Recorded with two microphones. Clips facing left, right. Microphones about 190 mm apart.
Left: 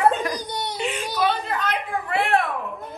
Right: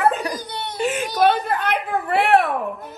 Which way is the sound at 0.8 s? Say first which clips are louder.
Right 7 dB; 50° right (ahead or behind).